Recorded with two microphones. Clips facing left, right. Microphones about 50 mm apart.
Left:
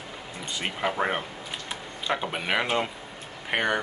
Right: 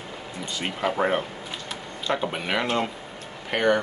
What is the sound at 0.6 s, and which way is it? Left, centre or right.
Speech, centre.